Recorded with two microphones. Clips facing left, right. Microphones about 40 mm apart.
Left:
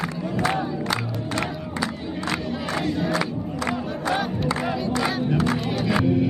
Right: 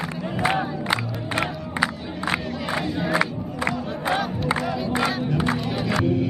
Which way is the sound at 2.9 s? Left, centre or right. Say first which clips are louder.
Right 1 dB; centre.